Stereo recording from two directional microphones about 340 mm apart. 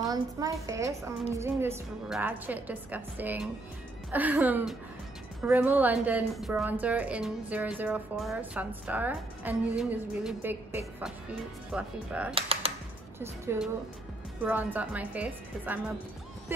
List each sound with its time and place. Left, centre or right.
0.1 s a woman's voice: centre
12.4 s typing: centre
13.2 s a woman's voice: centre